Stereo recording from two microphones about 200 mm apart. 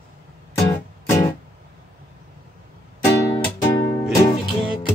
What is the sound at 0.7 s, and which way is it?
Music, 15° left (ahead or behind).